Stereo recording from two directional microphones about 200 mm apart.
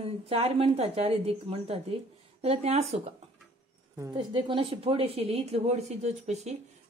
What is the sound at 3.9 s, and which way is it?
A woman's voice, 20° right (ahead or behind).